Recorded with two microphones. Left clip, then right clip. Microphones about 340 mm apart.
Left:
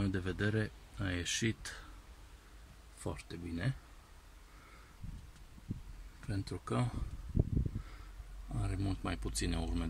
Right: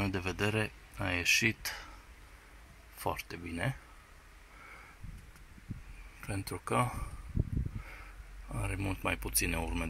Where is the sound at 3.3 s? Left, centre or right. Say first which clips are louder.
Right 2 dB; right.